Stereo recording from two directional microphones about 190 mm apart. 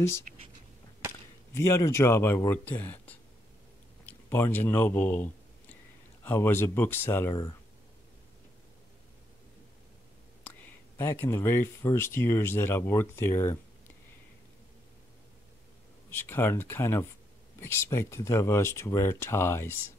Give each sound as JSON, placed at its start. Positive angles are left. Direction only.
{"t": 0.3, "sound": "a sound", "side_deg": -40}
{"t": 1.7, "sound": "speech", "side_deg": 15}
{"t": 4.0, "sound": "a sound", "side_deg": 10}
{"t": 6.2, "sound": "speech", "side_deg": 10}
{"t": 10.4, "sound": "speech", "side_deg": 10}
{"t": 16.1, "sound": "speech", "side_deg": 10}